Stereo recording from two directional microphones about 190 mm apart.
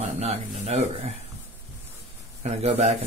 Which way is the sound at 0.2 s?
35° right (ahead or behind).